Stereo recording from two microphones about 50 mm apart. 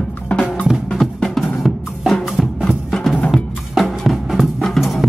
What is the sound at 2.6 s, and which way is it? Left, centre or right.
Music, centre.